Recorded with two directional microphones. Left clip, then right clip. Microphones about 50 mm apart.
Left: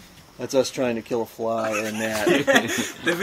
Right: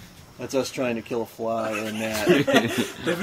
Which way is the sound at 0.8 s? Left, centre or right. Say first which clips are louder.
Left 2 dB; centre.